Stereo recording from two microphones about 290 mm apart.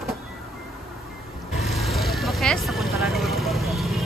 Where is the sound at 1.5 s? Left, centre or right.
Centre.